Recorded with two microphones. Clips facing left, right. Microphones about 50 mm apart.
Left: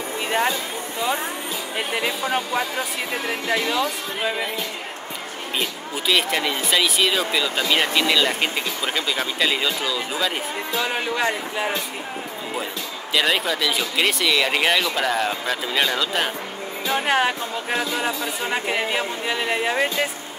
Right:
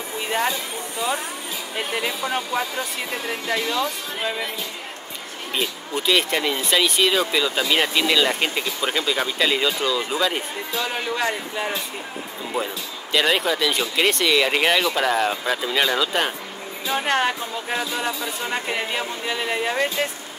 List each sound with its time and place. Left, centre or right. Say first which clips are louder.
1.8 s speech: left 1 dB; centre
5.6 s speech: right 2 dB; centre
10.8 s speech: left 1 dB; centre
13.1 s speech: right 1 dB; centre
16.9 s speech: left 1 dB; centre
17.7 s speech: left 2 dB; centre